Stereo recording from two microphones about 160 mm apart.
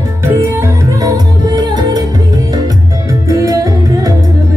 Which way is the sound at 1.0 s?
25° right (ahead or behind).